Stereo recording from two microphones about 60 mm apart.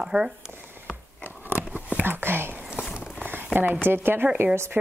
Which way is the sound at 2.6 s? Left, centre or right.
Centre.